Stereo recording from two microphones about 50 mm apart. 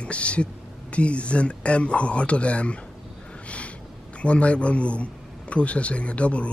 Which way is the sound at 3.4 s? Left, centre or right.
Left.